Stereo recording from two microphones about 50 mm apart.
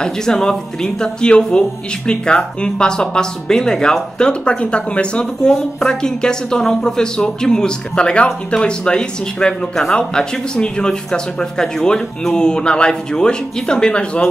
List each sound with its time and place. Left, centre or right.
0.0 s speech: centre